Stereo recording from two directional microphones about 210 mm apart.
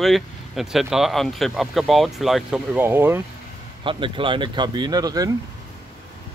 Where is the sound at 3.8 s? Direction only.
25° right (ahead or behind).